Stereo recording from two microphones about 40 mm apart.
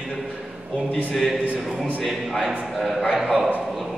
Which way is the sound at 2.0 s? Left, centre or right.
Centre.